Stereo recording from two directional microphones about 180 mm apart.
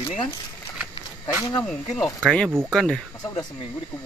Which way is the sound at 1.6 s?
Centre (ahead or behind).